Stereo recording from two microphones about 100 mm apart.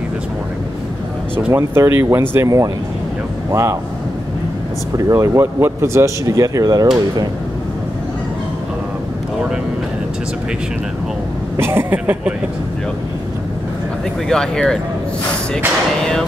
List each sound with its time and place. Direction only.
1.5 s speech: 25° right (ahead or behind)
4.9 s speech: 30° right (ahead or behind)
11.5 s speech: 25° right (ahead or behind)
14.3 s speech: 5° left (ahead or behind)
16.0 s music: 5° left (ahead or behind)